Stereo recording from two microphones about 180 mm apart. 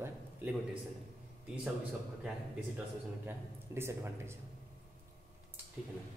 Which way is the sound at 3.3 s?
15° right (ahead or behind).